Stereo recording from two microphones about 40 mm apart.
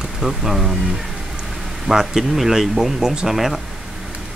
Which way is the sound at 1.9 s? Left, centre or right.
Centre.